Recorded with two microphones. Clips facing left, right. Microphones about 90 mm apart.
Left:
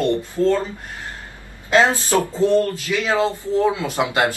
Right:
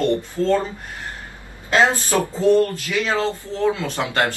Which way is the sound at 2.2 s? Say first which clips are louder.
Right 2 dB; 20° right (ahead or behind).